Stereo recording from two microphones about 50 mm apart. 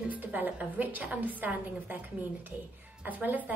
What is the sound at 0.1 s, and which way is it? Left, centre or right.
A woman's voice, right.